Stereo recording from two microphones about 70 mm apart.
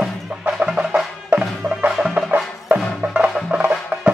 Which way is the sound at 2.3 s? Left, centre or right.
Centre.